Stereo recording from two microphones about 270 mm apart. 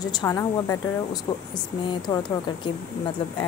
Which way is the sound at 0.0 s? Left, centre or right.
Centre.